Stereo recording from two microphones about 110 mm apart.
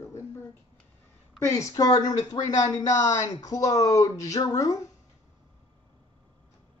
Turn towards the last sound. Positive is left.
turn(degrees=30)  # may be behind; listen again after turning